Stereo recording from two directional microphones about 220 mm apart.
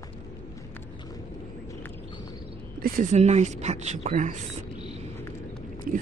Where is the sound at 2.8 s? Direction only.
40° right (ahead or behind).